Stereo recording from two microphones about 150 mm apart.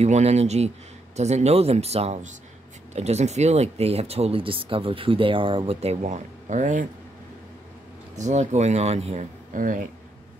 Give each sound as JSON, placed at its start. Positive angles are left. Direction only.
{"t": 0.0, "sound": "speech", "side_deg": -45}
{"t": 8.2, "sound": "speech", "side_deg": -50}
{"t": 9.5, "sound": "speech", "side_deg": -65}